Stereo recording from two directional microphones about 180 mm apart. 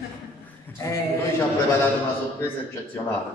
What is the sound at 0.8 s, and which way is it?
Speech, 15° left (ahead or behind).